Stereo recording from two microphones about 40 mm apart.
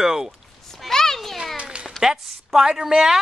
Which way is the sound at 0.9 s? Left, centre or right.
Centre.